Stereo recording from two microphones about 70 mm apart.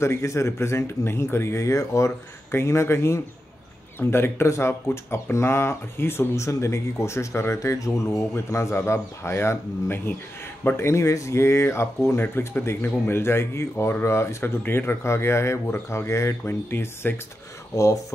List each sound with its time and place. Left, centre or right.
0.0 s speech: left